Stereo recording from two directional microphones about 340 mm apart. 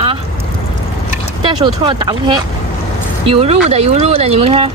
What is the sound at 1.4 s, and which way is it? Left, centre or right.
Speech, centre.